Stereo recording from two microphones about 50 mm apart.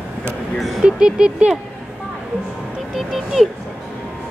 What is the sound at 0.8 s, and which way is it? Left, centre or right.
Speech, centre.